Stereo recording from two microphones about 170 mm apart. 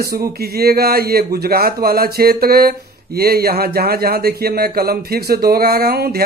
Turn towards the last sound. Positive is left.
turn(degrees=-65)  # may be behind; listen again after turning